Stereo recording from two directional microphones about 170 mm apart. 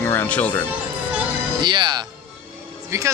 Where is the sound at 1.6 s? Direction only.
25° right (ahead or behind).